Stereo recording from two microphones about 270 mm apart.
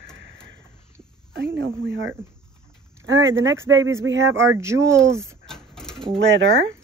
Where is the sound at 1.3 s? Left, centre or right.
Right.